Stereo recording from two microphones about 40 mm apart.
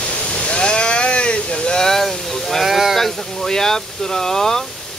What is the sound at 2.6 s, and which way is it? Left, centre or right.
Speech, centre.